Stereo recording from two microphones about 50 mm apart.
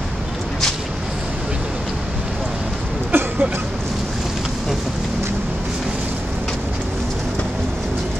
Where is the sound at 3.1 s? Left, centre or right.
Right.